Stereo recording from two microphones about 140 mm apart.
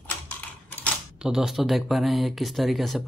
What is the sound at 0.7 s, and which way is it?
Keys jangling, 10° left (ahead or behind).